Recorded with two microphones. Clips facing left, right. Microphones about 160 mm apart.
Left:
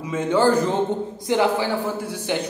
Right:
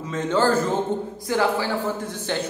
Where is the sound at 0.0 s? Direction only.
10° left (ahead or behind).